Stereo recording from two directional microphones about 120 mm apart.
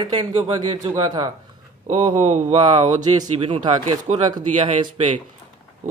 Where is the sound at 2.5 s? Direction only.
40° right (ahead or behind).